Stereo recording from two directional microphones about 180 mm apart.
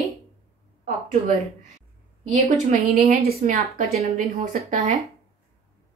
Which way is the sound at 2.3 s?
55° right (ahead or behind).